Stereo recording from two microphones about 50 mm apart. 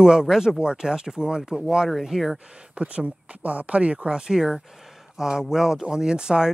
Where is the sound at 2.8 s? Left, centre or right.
Right.